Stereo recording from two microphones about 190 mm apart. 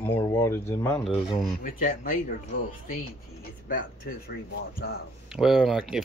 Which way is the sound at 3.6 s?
50° left (ahead or behind).